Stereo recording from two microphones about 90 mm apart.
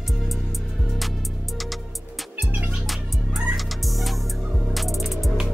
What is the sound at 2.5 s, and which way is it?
Music, 15° right (ahead or behind).